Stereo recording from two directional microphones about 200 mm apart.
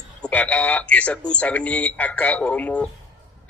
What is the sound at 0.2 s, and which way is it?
A man's voice, 5° left (ahead or behind).